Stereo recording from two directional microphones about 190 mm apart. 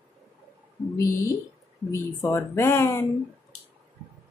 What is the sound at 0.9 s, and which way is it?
Speech, 15° left (ahead or behind).